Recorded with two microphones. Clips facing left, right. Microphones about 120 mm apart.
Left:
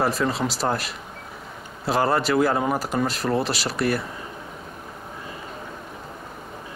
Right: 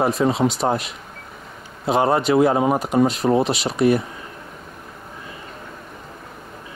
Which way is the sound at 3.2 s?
35° right (ahead or behind).